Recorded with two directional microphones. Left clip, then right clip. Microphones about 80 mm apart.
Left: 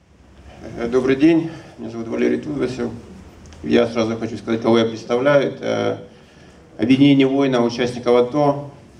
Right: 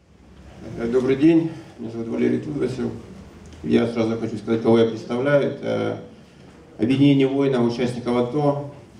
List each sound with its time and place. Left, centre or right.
0.7 s speech: left